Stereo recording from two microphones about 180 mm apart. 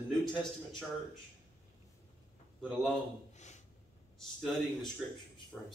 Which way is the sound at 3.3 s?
40° left (ahead or behind).